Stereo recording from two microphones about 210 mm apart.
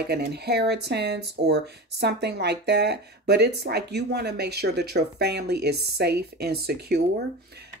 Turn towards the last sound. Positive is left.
turn(degrees=-50)  # may be behind; listen again after turning